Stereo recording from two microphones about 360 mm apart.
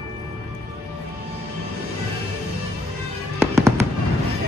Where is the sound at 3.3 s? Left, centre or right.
Centre.